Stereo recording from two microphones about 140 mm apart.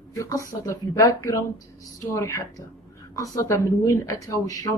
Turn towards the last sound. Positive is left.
turn(degrees=25)  # may be behind; listen again after turning